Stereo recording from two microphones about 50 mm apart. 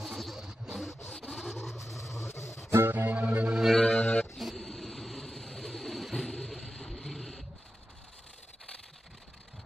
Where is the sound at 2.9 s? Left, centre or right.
Right.